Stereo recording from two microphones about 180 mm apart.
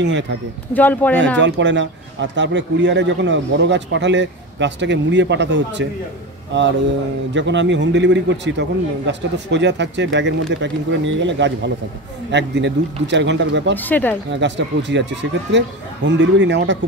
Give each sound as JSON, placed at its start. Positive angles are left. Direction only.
{"t": 0.7, "sound": "speech", "side_deg": 10}
{"t": 1.4, "sound": "speech", "side_deg": -85}
{"t": 13.7, "sound": "speech", "side_deg": 10}
{"t": 14.3, "sound": "speech", "side_deg": -80}